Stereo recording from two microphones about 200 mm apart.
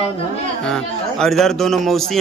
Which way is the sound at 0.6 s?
5° left (ahead or behind).